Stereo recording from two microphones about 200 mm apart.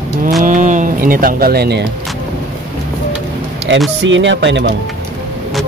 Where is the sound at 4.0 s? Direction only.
65° right (ahead or behind).